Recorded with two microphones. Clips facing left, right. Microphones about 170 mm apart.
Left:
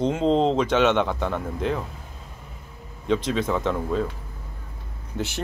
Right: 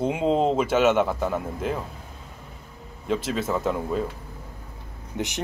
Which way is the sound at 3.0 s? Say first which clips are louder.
Left 2 dB; 5° right (ahead or behind).